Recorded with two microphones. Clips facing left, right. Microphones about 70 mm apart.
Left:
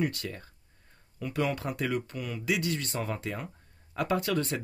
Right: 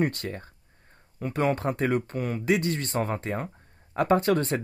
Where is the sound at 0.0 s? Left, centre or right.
Right.